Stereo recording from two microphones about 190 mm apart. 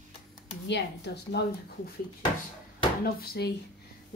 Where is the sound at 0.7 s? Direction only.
65° left (ahead or behind).